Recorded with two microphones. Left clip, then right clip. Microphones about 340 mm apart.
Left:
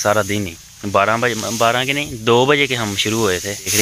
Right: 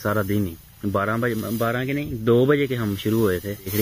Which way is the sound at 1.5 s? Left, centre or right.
Left.